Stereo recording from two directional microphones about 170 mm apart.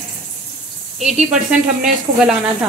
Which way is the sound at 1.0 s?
5° right (ahead or behind).